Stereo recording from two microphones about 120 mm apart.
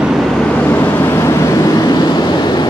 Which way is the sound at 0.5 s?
15° left (ahead or behind).